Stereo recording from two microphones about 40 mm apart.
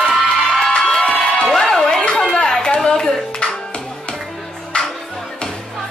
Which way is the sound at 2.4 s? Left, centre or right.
Centre.